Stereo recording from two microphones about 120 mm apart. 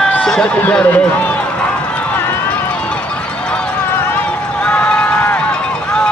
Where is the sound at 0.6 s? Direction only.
10° left (ahead or behind).